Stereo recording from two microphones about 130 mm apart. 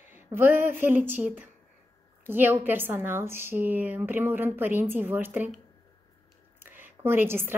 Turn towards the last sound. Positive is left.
turn(degrees=-15)  # may be behind; listen again after turning